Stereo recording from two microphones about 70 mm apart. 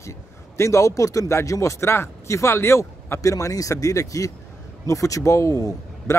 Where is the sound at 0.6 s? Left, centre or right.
Left.